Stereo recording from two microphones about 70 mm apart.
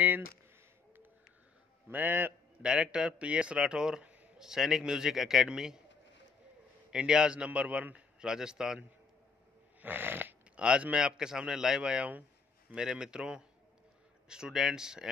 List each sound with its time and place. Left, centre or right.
1.9 s a man's voice: right
2.6 s a man's voice: centre
6.9 s a man's voice: centre
9.8 s snoring: right
10.5 s a man's voice: centre